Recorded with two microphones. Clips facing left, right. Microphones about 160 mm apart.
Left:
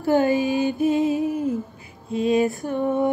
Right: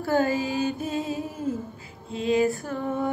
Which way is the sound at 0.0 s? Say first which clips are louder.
Left 5 dB; 20° left (ahead or behind).